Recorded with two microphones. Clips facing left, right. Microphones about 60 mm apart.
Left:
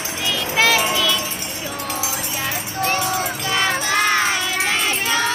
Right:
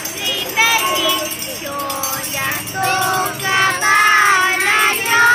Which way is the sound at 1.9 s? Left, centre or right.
Centre.